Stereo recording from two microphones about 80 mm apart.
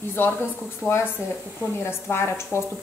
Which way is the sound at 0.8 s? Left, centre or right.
Left.